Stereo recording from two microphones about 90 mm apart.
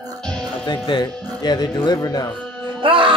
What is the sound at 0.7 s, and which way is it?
Speech, 55° left (ahead or behind).